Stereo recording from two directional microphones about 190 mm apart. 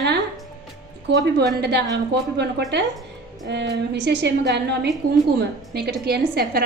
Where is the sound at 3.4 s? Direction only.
65° right (ahead or behind).